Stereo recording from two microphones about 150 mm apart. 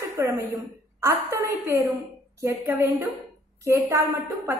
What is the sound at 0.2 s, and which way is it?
A woman's voice, 20° right (ahead or behind).